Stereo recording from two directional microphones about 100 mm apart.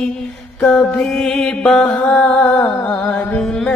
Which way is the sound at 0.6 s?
5° left (ahead or behind).